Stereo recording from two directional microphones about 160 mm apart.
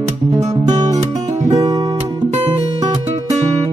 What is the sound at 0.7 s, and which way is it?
Music, 25° right (ahead or behind).